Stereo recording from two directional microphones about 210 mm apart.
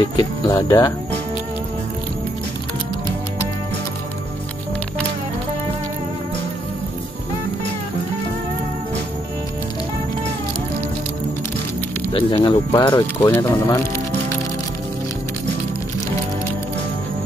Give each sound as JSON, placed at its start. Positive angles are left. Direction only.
{"t": 0.2, "sound": "speech", "side_deg": 20}
{"t": 12.1, "sound": "speech", "side_deg": 25}
{"t": 13.0, "sound": "speech", "side_deg": 15}